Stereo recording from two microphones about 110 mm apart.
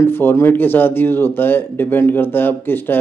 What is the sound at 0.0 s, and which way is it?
Speech, 20° left (ahead or behind).